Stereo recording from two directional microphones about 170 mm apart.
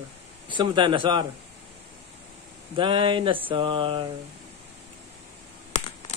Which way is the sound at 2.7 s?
30° right (ahead or behind).